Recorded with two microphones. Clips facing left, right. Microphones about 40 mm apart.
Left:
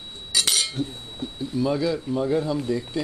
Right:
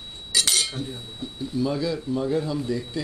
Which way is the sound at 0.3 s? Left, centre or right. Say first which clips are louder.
Even; centre.